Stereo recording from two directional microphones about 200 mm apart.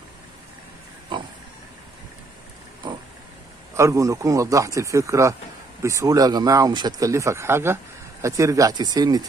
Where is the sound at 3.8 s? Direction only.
15° right (ahead or behind).